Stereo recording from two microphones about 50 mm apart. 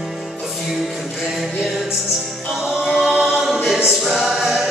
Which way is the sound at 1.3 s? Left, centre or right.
Centre.